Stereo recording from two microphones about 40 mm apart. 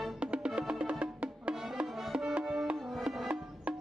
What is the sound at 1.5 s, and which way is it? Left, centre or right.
Music, centre.